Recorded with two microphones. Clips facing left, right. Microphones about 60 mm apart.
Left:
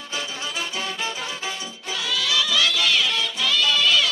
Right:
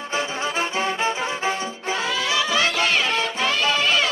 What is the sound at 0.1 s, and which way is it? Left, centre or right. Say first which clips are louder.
Music: right 5 dB; right.